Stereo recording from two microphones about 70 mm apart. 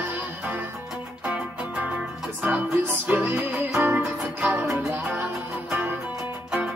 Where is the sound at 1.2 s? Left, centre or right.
Right.